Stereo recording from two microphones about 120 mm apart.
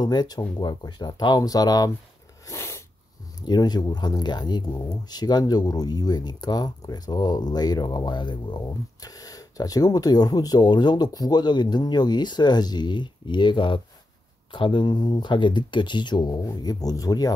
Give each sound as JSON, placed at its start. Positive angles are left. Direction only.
{"t": 0.0, "sound": "speech", "side_deg": 35}
{"t": 2.4, "sound": "snort", "side_deg": 25}
{"t": 3.3, "sound": "speech", "side_deg": 35}